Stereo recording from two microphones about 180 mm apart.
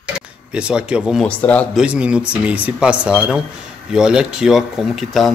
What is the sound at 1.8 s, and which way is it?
A man's voice, 5° right (ahead or behind).